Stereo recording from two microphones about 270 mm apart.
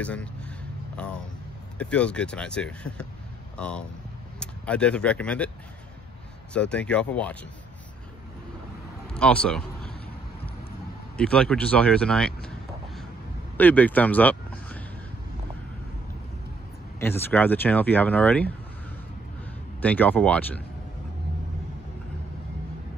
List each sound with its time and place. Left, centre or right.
0.0 s speech: centre
1.8 s speech: centre
6.5 s speech: centre
9.1 s a man's voice: centre
11.1 s speech: centre
13.6 s speech: centre
17.0 s speech: centre
19.8 s speech: centre